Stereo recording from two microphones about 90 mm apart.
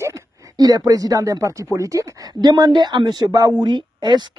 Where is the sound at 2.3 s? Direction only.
55° right (ahead or behind).